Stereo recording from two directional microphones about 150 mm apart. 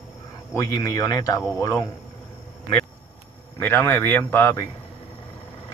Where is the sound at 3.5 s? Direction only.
15° left (ahead or behind).